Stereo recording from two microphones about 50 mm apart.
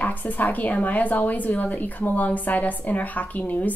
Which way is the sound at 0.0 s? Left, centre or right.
Left.